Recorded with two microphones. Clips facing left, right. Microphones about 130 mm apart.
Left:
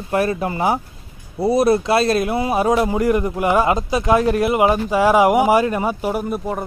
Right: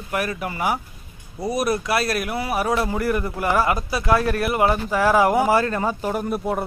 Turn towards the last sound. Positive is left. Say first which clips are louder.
# left 1 dB
turn(degrees=0)  # may be behind; listen again after turning